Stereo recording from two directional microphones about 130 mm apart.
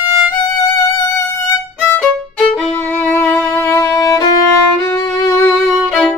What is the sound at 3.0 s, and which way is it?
Music, 15° left (ahead or behind).